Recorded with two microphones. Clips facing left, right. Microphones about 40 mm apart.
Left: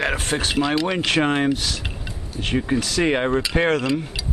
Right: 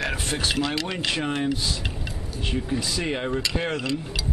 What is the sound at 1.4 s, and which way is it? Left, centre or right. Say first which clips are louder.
Speech: left 4 dB; left.